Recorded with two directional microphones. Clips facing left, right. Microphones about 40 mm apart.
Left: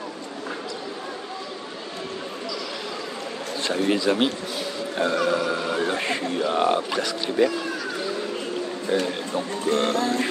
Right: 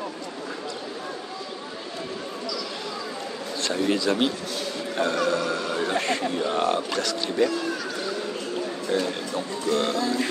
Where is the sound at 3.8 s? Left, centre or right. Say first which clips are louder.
Left 2 dB; centre.